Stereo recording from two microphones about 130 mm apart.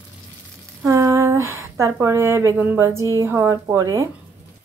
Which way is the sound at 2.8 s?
25° right (ahead or behind).